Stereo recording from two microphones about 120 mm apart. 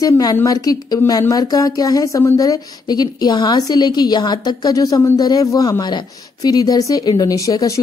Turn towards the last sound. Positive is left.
turn(degrees=30)  # may be behind; listen again after turning